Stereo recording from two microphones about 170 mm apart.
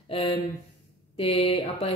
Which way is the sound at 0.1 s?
30° left (ahead or behind).